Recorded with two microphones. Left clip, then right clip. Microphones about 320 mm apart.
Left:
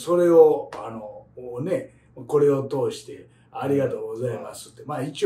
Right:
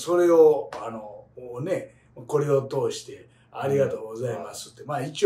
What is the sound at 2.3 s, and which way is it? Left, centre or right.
A man's voice, centre.